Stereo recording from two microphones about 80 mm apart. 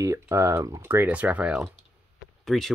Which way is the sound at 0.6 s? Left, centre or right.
Right.